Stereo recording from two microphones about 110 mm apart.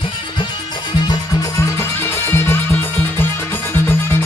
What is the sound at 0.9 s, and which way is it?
Music, 35° left (ahead or behind).